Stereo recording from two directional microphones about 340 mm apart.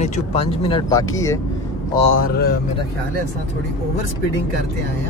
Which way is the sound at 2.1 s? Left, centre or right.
Left.